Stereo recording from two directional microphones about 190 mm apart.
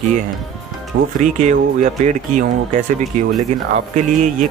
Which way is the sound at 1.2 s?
40° right (ahead or behind).